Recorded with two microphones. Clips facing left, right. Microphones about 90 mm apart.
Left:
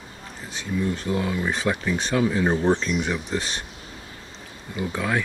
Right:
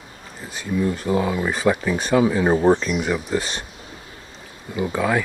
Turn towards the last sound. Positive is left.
turn(degrees=-5)  # may be behind; listen again after turning